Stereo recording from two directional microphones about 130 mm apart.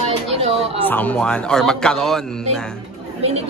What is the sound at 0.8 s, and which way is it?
Speech, 10° left (ahead or behind).